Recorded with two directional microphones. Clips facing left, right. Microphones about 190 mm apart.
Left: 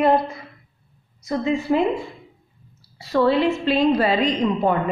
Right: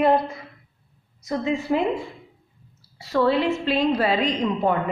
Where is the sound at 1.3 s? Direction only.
15° right (ahead or behind).